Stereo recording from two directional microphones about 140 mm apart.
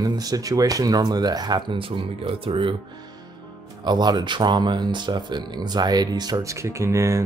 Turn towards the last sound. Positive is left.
turn(degrees=-20)  # may be behind; listen again after turning